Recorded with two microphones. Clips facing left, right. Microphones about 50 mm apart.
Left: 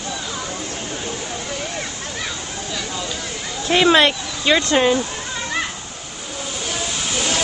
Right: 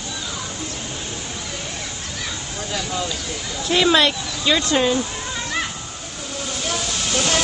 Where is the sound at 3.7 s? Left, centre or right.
Left.